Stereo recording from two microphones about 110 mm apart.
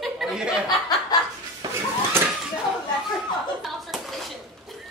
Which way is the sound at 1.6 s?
40° right (ahead or behind).